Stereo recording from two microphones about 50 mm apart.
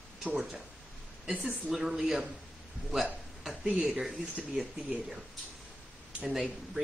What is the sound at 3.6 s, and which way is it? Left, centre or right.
Speech, centre.